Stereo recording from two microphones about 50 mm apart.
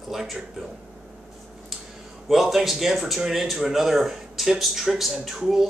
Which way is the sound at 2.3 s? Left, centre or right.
Centre.